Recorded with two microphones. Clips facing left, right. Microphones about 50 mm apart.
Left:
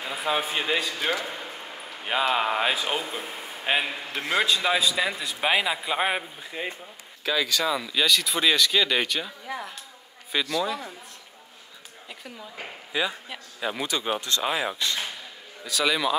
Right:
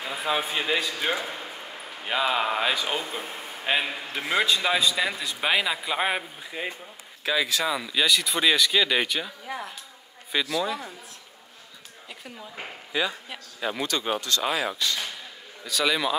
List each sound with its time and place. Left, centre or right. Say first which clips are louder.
0.0 s a man's voice: even; centre
1.2 s a sound: even; centre
2.3 s a man's voice: left 1 dB; centre
7.2 s a man's voice: even; centre
12.1 s a man's voice: even; centre
14.5 s speech: even; centre
15.6 s a man's voice: even; centre